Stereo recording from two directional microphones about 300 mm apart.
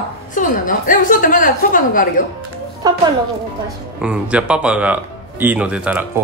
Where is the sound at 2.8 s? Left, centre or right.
Centre.